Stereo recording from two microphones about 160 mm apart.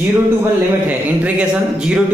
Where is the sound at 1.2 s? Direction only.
5° right (ahead or behind).